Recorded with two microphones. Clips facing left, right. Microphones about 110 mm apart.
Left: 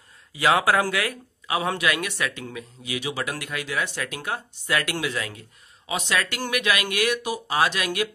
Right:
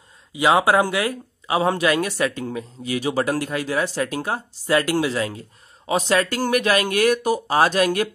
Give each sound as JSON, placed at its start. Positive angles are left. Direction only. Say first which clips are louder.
{"t": 0.3, "sound": "speech", "louder": "right 3 dB", "side_deg": -20}